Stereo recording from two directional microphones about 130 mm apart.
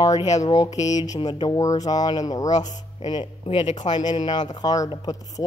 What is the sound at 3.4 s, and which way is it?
Speech, 50° left (ahead or behind).